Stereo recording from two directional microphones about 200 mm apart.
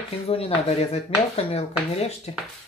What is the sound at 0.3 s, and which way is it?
Speech, 30° left (ahead or behind).